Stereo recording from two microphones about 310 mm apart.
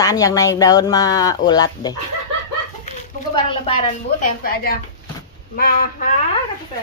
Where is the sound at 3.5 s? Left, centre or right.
Centre.